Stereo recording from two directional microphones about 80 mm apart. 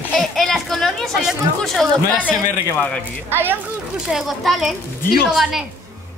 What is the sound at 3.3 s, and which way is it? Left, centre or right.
Speech, right.